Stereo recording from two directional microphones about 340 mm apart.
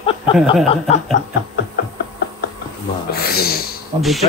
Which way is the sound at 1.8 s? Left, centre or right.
Left.